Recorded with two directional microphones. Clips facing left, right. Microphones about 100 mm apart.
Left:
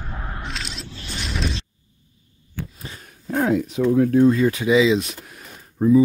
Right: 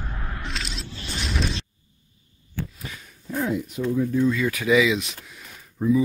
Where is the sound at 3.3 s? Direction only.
80° left; by 4.3 s 60° left (ahead or behind).